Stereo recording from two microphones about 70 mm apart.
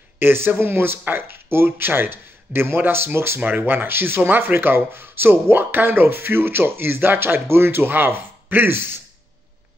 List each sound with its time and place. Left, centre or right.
0.2 s speech: right